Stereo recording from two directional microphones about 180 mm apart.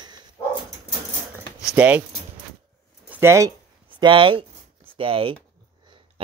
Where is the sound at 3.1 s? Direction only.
15° right (ahead or behind).